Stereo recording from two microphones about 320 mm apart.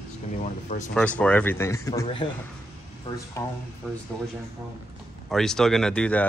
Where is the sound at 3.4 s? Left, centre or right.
Centre.